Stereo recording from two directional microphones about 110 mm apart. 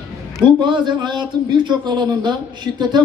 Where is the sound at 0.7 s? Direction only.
45° right (ahead or behind).